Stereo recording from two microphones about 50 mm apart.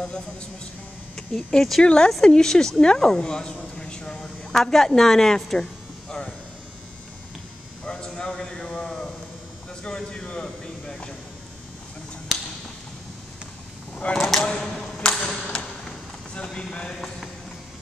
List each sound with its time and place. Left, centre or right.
0.0 s a woman's voice: centre
3.7 s a sound: centre
4.6 s speech: centre
7.8 s a woman's voice: centre
13.9 s speech: left
14.2 s a woman's voice: centre
14.5 s a sound: left
16.3 s speech: centre
16.9 s speech: centre